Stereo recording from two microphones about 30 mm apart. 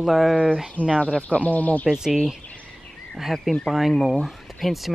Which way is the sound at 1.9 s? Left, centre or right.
Centre.